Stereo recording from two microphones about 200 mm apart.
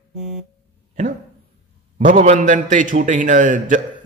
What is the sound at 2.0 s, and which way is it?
A man's voice, 40° right (ahead or behind).